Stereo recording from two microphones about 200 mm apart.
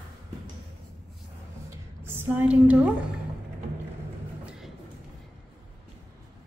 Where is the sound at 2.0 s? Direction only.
10° right (ahead or behind).